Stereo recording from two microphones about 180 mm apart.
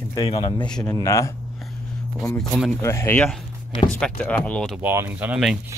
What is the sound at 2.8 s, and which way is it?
Speech, 15° left (ahead or behind).